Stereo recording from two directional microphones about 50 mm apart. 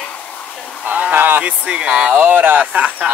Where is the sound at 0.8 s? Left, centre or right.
Right.